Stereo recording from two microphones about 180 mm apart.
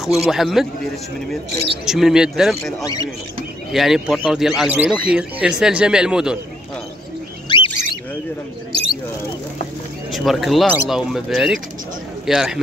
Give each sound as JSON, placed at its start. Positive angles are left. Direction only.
{"t": 0.0, "sound": "a man's voice", "side_deg": 0}
{"t": 1.9, "sound": "a man's voice", "side_deg": 0}
{"t": 2.6, "sound": "speech", "side_deg": 20}
{"t": 3.7, "sound": "a man's voice", "side_deg": 0}
{"t": 7.4, "sound": "rodents", "side_deg": 25}
{"t": 10.1, "sound": "a man's voice", "side_deg": 0}